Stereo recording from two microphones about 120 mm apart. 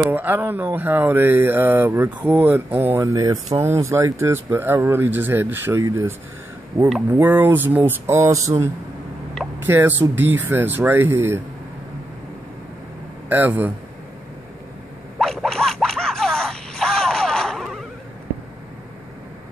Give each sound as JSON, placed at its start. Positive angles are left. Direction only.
{"t": 0.1, "sound": "speech", "side_deg": -15}
{"t": 7.1, "sound": "speech", "side_deg": -15}
{"t": 9.6, "sound": "speech", "side_deg": -15}
{"t": 13.3, "sound": "speech", "side_deg": -15}
{"t": 15.1, "sound": "music", "side_deg": 0}